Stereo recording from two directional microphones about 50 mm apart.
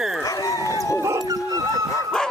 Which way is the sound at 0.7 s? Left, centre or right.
Left.